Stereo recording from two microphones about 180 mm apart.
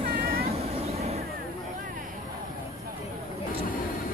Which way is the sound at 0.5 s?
35° right (ahead or behind).